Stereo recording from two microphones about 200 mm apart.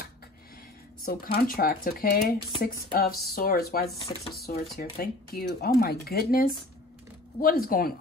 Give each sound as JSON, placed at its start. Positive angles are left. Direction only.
{"t": 1.0, "sound": "speech", "side_deg": 45}
{"t": 7.4, "sound": "speech", "side_deg": 45}